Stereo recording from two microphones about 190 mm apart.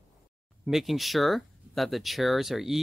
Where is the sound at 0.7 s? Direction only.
Centre (ahead or behind).